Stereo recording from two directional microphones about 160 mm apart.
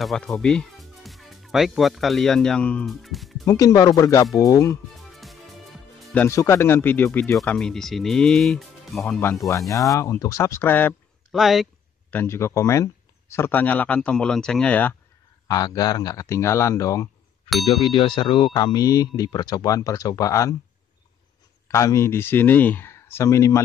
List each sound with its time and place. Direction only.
0.0 s speech: centre (ahead or behind)
3.4 s speech: 20° left (ahead or behind)
5.1 s music: centre (ahead or behind)
6.2 s speech: 15° left (ahead or behind)
9.5 s speech: 20° left (ahead or behind)
11.3 s speech: centre (ahead or behind)
12.1 s speech: 15° left (ahead or behind)
15.4 s speech: 25° left (ahead or behind)
21.6 s speech: 20° left (ahead or behind)